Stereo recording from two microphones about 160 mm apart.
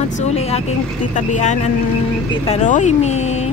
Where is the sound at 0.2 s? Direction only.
40° left (ahead or behind).